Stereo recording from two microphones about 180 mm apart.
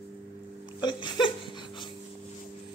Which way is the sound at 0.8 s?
25° left (ahead or behind).